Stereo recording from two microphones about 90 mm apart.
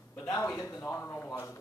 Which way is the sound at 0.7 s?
25° left (ahead or behind).